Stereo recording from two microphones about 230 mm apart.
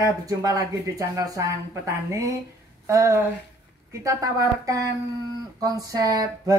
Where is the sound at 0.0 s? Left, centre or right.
Centre.